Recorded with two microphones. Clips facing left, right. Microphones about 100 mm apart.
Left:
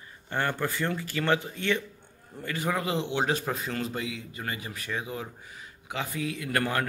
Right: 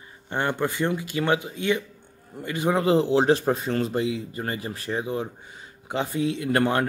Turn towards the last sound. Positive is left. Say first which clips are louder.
# right 6 dB
turn(degrees=-25)  # may be behind; listen again after turning